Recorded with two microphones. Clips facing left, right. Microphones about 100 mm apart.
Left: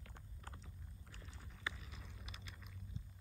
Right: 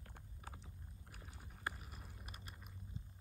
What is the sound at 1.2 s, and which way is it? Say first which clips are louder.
Chewing: right 2 dB; 50° right (ahead or behind).